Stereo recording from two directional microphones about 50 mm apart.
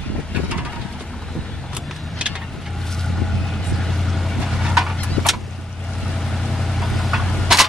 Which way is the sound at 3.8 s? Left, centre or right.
Centre.